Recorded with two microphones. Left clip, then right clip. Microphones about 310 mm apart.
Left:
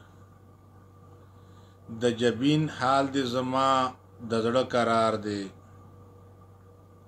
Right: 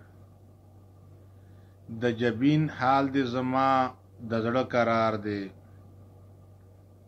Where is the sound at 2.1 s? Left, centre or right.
Left.